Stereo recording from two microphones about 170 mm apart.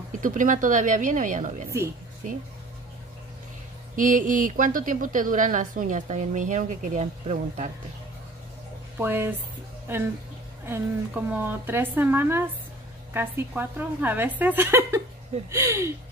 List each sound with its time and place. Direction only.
0.2 s a woman's voice: 50° right (ahead or behind)
3.9 s a woman's voice: 50° right (ahead or behind)
8.9 s a woman's voice: 15° right (ahead or behind)